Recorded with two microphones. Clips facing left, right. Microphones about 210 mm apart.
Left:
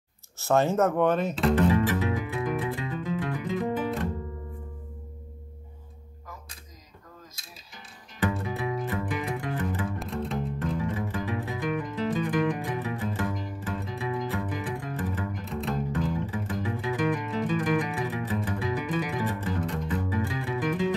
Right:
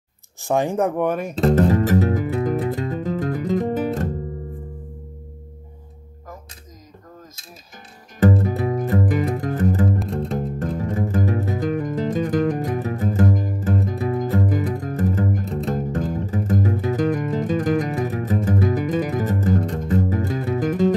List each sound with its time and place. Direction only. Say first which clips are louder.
0.4 s speech: right 2 dB; 15° right (ahead or behind)
1.4 s music: right 7 dB; 45° right (ahead or behind)
8.2 s music: right 10 dB; 40° right (ahead or behind)